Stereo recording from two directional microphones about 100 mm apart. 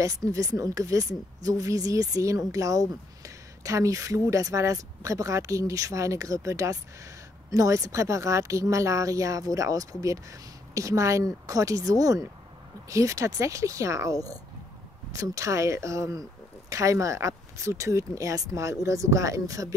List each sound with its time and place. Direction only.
0.0 s speech: 35° right (ahead or behind)